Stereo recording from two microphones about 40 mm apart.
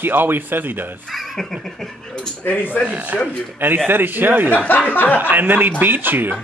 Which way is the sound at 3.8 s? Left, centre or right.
Right.